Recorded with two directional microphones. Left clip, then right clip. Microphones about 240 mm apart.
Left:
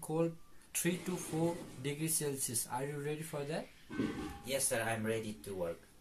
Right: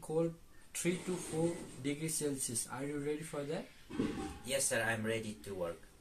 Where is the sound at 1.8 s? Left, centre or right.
Left.